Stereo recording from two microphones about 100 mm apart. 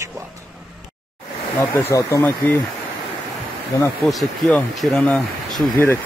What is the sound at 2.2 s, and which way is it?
Speech, 20° left (ahead or behind).